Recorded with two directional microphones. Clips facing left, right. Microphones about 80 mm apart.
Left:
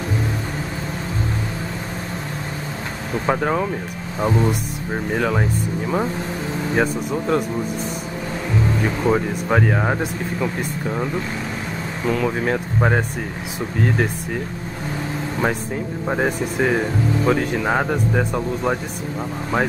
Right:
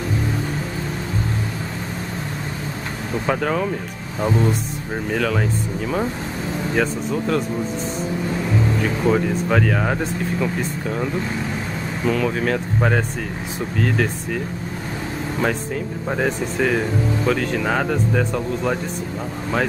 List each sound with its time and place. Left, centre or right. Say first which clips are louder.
3.3 s a man's voice: left 1 dB; centre
9.0 s a man's voice: right 2 dB; centre
12.1 s a man's voice: even; centre
15.4 s a man's voice: even; left